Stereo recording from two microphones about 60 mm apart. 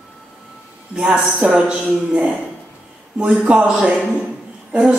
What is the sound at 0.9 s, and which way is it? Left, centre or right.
A man's voice, centre.